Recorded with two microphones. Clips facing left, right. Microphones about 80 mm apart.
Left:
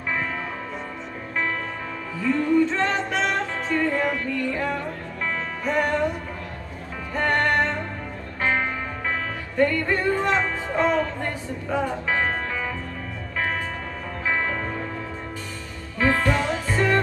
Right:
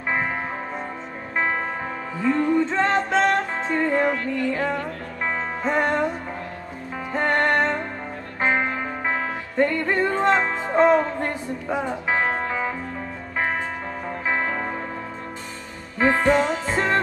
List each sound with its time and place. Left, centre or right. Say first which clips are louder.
0.1 s music: right 3 dB; right
7.1 s music: right 1 dB; right
14.2 s music: even; right
16.0 s music: right 3 dB; right